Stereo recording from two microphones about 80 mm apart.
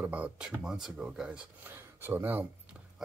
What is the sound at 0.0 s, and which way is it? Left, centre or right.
Speech, centre.